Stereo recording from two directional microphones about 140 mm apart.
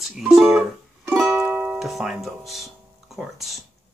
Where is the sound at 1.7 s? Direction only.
Centre (ahead or behind).